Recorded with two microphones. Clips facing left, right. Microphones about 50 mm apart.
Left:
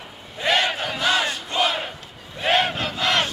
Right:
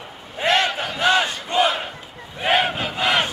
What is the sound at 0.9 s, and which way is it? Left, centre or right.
Battle cry, centre.